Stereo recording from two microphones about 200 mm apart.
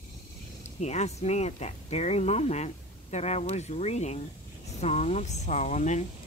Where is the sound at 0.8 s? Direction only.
35° left (ahead or behind).